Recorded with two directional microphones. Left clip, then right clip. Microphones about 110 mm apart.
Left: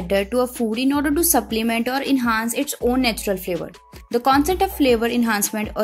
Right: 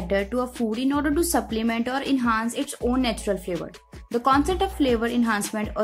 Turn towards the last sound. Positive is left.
turn(degrees=35)  # may be behind; listen again after turning